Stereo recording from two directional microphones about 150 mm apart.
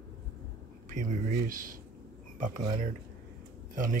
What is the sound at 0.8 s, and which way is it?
Speech, 60° right (ahead or behind).